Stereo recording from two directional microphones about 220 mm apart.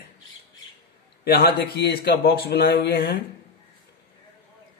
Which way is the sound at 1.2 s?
45° left (ahead or behind).